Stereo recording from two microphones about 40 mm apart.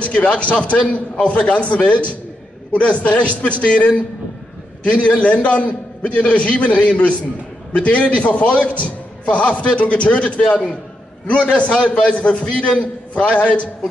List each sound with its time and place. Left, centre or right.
0.0 s a man's voice: left